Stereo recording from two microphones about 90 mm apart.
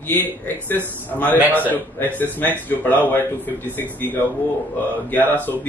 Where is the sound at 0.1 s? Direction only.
20° left (ahead or behind).